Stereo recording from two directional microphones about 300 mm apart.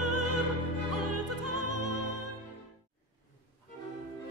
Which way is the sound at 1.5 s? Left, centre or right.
Right.